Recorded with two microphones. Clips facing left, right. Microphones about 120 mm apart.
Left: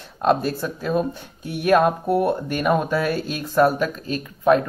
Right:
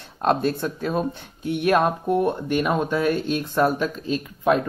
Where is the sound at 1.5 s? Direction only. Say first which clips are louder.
Left 2 dB; 5° left (ahead or behind).